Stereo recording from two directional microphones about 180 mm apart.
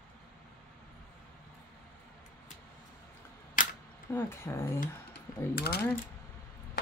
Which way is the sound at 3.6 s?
50° left (ahead or behind).